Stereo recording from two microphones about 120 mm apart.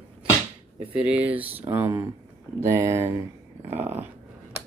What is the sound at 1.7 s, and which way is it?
Speech, 25° right (ahead or behind).